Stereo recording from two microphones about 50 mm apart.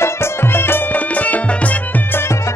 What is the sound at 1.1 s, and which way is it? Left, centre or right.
Music, left.